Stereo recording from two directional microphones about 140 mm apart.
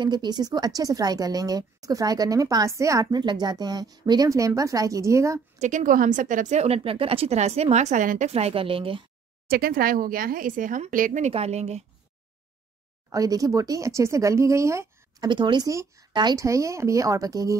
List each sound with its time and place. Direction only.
0.0 s a woman's voice: 30° right (ahead or behind)
5.6 s a woman's voice: 60° right (ahead or behind)
8.3 s a woman's voice: 50° right (ahead or behind)
9.5 s speech: 90° right; by 11.3 s 65° right (ahead or behind)
11.3 s a woman's voice: 50° right (ahead or behind)
13.1 s a woman's voice: 25° right (ahead or behind)
15.2 s a woman's voice: 35° right (ahead or behind)